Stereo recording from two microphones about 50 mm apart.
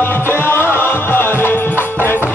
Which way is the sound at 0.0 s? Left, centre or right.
Left.